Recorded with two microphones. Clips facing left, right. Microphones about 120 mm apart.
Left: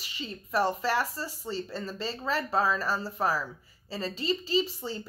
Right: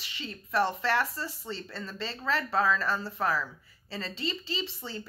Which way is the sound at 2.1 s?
10° left (ahead or behind).